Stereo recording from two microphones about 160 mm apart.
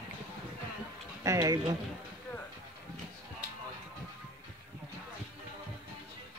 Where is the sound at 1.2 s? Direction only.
20° right (ahead or behind).